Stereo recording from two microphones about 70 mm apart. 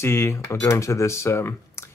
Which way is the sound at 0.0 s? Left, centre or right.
Left.